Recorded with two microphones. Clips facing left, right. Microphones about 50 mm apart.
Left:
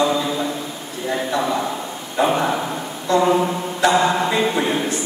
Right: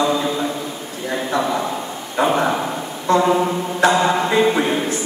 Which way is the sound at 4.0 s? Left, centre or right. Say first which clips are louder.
Right 2 dB; centre.